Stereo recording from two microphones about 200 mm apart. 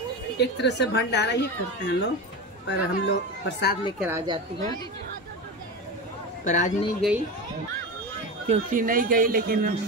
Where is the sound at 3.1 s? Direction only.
60° left (ahead or behind).